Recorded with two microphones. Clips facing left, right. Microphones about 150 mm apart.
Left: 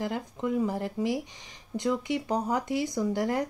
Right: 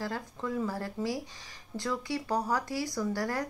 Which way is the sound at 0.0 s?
20° left (ahead or behind).